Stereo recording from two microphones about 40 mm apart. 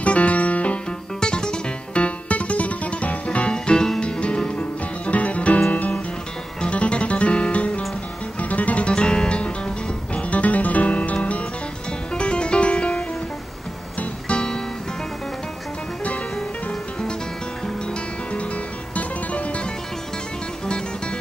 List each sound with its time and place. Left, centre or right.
0.0 s music: left
1.2 s music: left
10.1 s music: left
12.1 s music: left
14.3 s music: centre
18.9 s music: left